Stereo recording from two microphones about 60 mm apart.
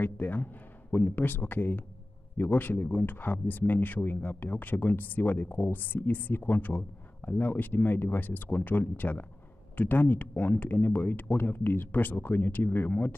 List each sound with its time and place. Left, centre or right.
0.0 s speech: left